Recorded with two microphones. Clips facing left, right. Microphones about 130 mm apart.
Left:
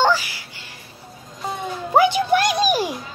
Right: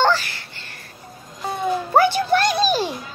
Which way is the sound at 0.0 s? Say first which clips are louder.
Even; 10° left (ahead or behind).